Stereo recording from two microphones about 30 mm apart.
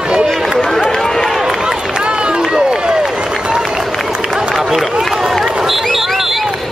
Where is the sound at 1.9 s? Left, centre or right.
Right.